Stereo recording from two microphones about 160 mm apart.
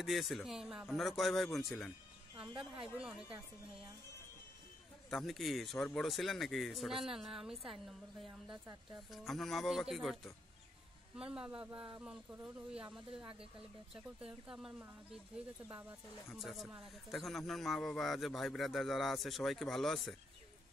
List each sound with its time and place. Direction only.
0.0 s speech: centre (ahead or behind)
2.3 s speech: 30° right (ahead or behind)
3.0 s speech: 5° right (ahead or behind)
5.1 s speech: centre (ahead or behind)
8.3 s speech: 10° right (ahead or behind)
9.1 s speech: centre (ahead or behind)